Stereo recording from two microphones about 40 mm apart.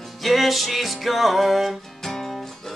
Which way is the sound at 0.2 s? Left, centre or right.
Centre.